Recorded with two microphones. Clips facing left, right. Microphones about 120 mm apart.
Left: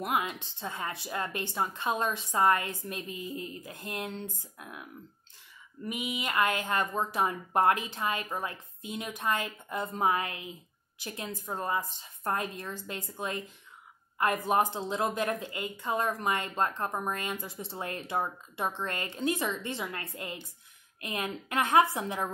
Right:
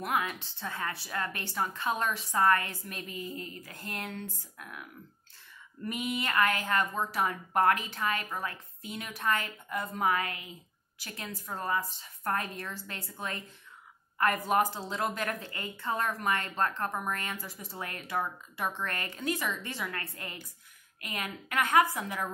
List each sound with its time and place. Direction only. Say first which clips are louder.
0.0 s a woman's voice: left 1 dB; 20° left (ahead or behind)
5.9 s a woman's voice: right 1 dB; 10° left (ahead or behind)